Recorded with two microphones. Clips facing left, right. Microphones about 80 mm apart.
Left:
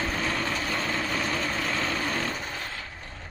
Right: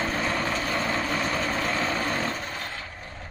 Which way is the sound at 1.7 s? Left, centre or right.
Right.